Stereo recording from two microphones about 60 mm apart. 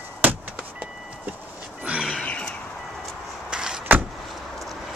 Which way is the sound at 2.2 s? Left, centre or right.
Centre.